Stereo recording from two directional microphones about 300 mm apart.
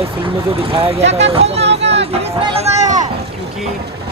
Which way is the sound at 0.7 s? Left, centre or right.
Centre.